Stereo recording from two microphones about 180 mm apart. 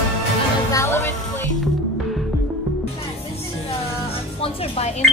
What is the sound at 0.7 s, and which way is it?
Music, 15° left (ahead or behind).